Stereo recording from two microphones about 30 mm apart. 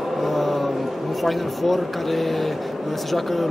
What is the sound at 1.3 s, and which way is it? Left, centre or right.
Speech, centre.